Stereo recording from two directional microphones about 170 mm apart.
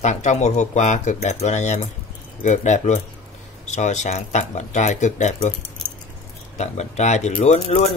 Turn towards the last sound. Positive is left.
turn(degrees=40)  # may be behind; listen again after turning